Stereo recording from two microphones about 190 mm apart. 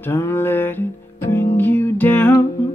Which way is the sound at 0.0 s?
10° left (ahead or behind).